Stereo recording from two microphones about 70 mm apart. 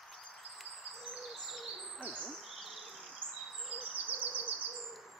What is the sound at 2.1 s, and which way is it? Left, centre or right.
Bird, centre.